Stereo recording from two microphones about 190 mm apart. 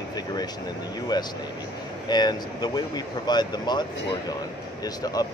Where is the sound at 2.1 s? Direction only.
20° left (ahead or behind).